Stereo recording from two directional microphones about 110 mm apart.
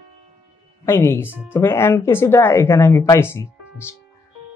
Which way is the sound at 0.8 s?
25° left (ahead or behind).